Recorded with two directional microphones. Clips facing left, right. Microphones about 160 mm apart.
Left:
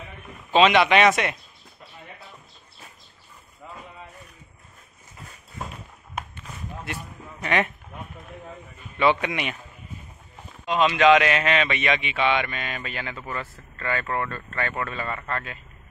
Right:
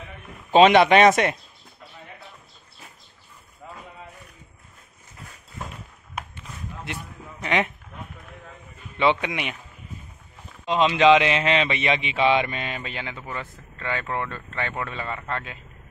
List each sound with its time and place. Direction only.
0.5 s speech: 45° right (ahead or behind)
7.4 s a man's voice: 15° right (ahead or behind)
8.9 s a man's voice: 20° right (ahead or behind)
10.6 s a man's voice: 25° right (ahead or behind)